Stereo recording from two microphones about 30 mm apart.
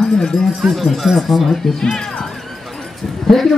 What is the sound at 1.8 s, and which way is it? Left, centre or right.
Speech, centre.